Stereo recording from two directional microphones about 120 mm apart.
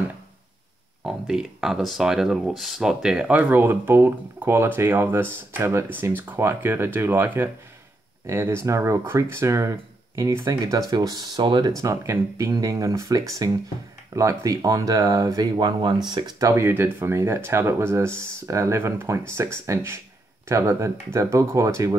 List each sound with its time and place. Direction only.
1.0 s speech: 5° right (ahead or behind); by 11.7 s 40° right (ahead or behind)
11.7 s speech: 25° right (ahead or behind)